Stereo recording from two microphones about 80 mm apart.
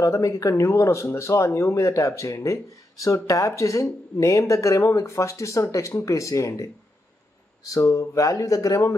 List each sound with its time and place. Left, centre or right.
0.0 s speech: left
7.7 s speech: left